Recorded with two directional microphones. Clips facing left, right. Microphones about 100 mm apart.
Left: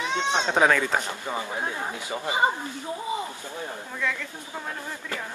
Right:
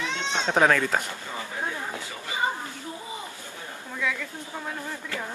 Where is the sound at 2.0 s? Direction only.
20° left (ahead or behind).